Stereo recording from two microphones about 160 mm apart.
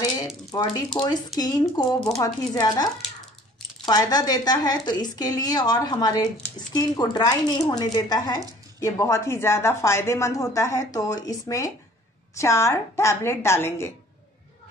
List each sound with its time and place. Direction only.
0.5 s a woman's voice: 25° left (ahead or behind)